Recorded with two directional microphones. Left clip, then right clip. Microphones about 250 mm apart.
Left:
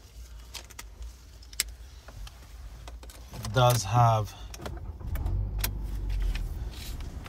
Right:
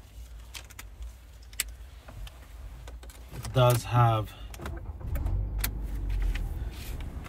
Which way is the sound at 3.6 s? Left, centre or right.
Left.